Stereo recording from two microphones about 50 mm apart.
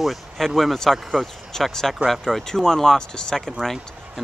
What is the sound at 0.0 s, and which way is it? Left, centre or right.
Speech, centre.